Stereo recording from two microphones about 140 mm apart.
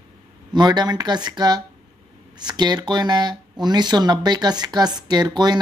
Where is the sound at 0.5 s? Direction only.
30° right (ahead or behind).